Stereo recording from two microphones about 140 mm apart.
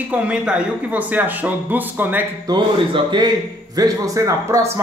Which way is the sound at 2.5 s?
30° right (ahead or behind).